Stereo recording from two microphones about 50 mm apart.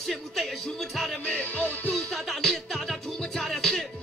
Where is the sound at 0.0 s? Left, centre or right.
Centre.